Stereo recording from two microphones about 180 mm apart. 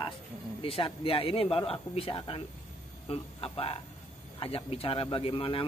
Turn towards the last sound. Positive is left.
turn(degrees=30)  # may be behind; listen again after turning